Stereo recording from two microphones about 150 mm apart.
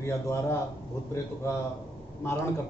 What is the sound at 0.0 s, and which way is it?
A man's voice, 20° left (ahead or behind).